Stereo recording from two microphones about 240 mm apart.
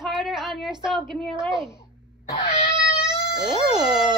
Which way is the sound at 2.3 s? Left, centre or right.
Left.